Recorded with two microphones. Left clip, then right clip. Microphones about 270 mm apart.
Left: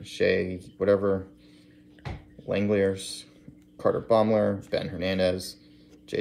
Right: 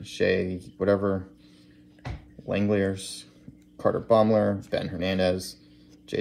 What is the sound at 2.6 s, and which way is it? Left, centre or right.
Speech, centre.